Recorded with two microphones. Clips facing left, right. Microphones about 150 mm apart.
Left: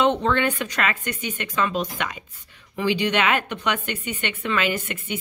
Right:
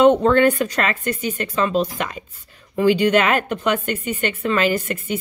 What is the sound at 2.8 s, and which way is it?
Speech, 45° right (ahead or behind).